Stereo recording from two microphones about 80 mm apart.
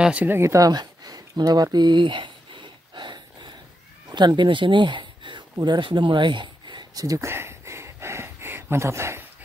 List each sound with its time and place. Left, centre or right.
0.0 s speech: centre
0.3 s a sound: right
4.1 s speech: right
5.6 s speech: right
7.0 s speech: right
7.2 s a sound: right